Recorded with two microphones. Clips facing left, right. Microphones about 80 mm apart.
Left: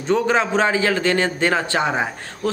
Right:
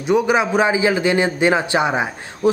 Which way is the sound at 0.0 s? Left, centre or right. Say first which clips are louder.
Right 2 dB; centre.